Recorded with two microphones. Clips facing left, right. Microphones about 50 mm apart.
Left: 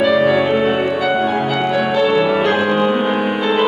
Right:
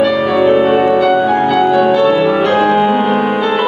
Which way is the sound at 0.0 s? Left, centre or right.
Centre.